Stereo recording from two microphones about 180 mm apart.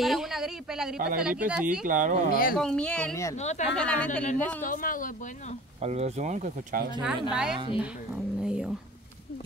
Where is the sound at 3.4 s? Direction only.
40° left (ahead or behind).